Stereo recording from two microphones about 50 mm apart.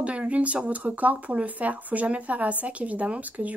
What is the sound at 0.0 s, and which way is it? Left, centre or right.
Speech, right.